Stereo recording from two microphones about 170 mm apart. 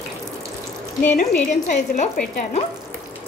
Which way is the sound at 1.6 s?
45° left (ahead or behind).